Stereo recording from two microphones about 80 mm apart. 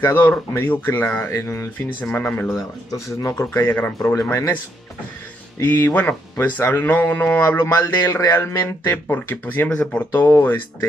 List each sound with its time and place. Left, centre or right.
0.0 s speech: left
1.3 s speech: left
2.0 s speech: left
2.9 s speech: left
3.3 s speech: left
4.1 s speech: left
5.6 s speech: left
10.1 s speech: left